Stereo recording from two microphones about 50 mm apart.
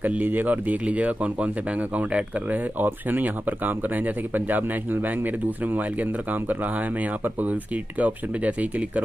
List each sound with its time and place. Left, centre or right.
0.0 s speech: right